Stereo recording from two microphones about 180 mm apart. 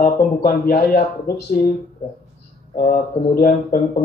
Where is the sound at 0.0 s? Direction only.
50° left (ahead or behind).